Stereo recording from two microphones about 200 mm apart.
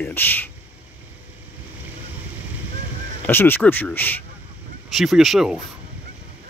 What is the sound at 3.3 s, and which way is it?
Speech, 10° left (ahead or behind).